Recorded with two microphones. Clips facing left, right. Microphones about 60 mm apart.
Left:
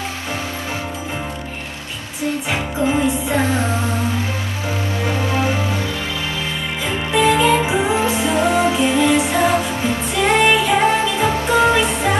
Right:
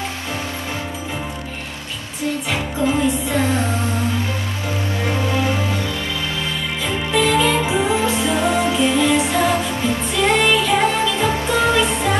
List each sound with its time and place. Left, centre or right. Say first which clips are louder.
2.5 s music: left 1 dB; centre
5.3 s music: left 1 dB; centre
7.1 s music: left 3 dB; centre